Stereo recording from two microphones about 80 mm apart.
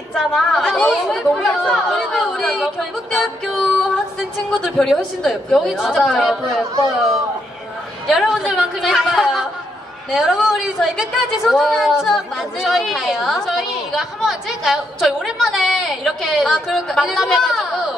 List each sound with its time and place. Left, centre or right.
0.1 s a woman's voice: centre
6.7 s speech: right
8.1 s a woman's voice: centre